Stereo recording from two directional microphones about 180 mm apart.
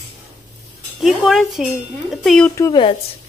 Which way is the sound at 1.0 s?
Centre (ahead or behind).